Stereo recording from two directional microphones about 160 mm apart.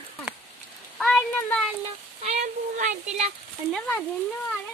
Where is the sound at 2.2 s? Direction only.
45° right (ahead or behind).